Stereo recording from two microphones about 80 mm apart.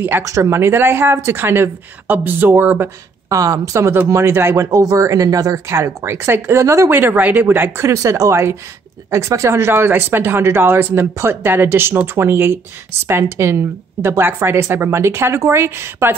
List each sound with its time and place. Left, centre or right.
0.2 s a woman's voice: right
3.3 s a woman's voice: right
4.6 s a woman's voice: right
6.9 s a woman's voice: right